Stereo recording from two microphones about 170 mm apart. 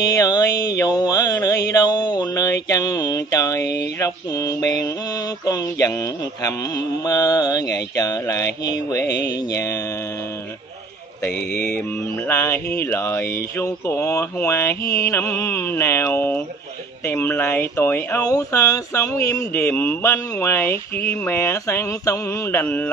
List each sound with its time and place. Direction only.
0.0 s mantra: 20° left (ahead or behind)
1.7 s a sound: 20° left (ahead or behind)
4.0 s mantra: 20° left (ahead or behind)
7.1 s mantra: 20° left (ahead or behind)
9.0 s music: 75° left (ahead or behind)
12.3 s speech: 15° left (ahead or behind)